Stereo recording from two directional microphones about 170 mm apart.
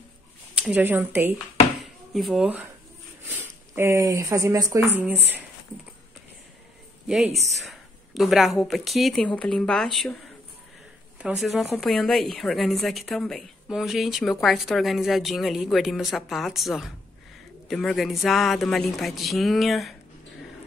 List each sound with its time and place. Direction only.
0.6 s speech: 10° right (ahead or behind)
2.1 s a woman's voice: centre (ahead or behind)
7.6 s a woman's voice: centre (ahead or behind)
11.2 s a woman's voice: centre (ahead or behind)